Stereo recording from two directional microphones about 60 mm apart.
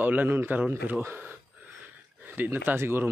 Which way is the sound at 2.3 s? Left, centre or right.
Right.